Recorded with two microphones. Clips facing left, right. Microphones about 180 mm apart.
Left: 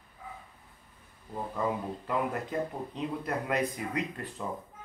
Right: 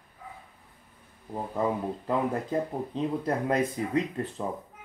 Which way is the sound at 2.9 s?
30° right (ahead or behind).